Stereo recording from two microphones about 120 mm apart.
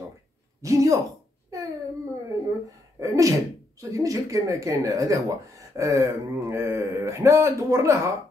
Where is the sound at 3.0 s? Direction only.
25° right (ahead or behind).